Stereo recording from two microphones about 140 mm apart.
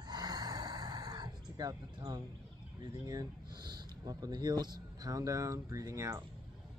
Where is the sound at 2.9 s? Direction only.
30° right (ahead or behind).